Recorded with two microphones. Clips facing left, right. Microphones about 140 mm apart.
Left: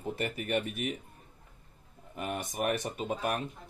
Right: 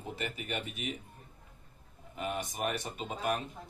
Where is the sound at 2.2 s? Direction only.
50° left (ahead or behind).